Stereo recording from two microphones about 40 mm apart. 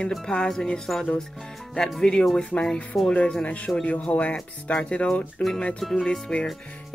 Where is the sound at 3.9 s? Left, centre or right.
Left.